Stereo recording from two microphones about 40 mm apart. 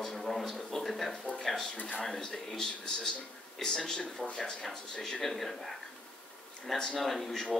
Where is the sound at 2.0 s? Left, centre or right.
Centre.